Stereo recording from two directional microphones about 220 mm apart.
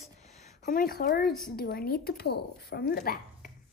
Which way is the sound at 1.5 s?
45° left (ahead or behind).